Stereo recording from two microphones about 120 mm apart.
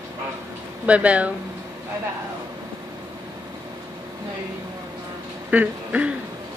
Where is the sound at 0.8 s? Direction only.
10° right (ahead or behind).